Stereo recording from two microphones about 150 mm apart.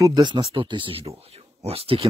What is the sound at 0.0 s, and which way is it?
Speech, 30° right (ahead or behind).